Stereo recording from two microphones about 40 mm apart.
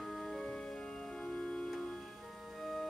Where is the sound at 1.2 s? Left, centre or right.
Left.